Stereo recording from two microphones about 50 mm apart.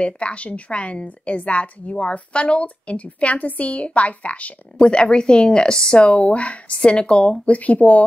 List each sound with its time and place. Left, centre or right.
0.0 s a woman's voice: left
4.7 s a woman's voice: centre